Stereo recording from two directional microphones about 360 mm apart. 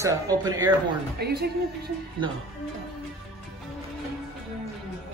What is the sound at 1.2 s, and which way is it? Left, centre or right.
Speech, right.